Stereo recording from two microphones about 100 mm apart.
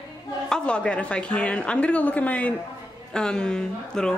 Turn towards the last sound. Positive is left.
turn(degrees=5)  # may be behind; listen again after turning